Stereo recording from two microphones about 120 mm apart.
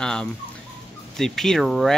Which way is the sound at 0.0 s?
5° left (ahead or behind).